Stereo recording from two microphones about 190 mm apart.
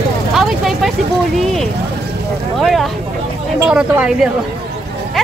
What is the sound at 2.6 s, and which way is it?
A woman's voice, centre (ahead or behind).